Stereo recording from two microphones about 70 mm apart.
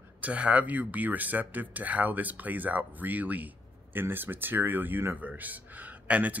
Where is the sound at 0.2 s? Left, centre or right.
Right.